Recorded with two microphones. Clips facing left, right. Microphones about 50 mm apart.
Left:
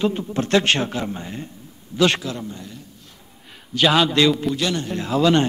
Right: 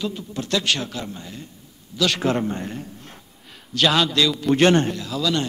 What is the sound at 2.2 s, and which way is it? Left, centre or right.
Speech, right.